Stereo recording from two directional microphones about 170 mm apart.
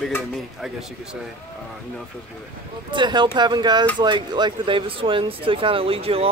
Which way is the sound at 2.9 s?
25° right (ahead or behind).